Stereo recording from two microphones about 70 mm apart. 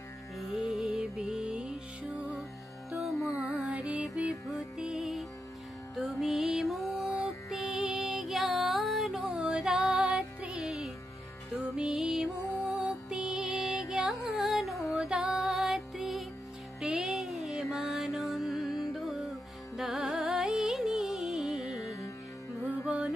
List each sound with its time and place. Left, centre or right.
0.4 s music: centre
2.9 s music: centre
21.8 s music: left